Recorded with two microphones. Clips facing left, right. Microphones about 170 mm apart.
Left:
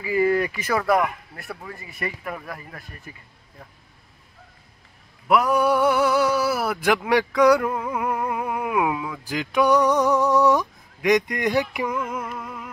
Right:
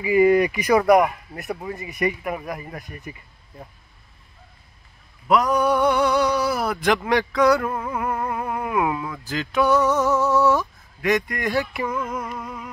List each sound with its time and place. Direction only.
0.0 s speech: 15° right (ahead or behind)
5.3 s speech: 10° left (ahead or behind)